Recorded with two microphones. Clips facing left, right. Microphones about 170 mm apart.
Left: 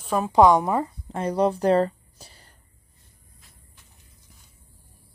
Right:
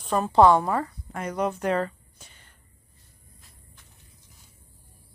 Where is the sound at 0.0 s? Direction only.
10° left (ahead or behind); by 2.5 s 35° left (ahead or behind).